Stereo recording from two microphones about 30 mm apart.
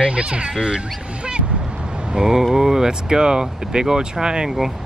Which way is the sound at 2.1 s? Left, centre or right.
Centre.